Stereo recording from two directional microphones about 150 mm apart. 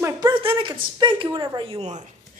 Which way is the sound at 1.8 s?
50° right (ahead or behind).